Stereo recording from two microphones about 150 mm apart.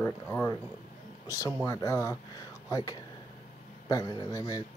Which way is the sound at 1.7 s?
20° left (ahead or behind).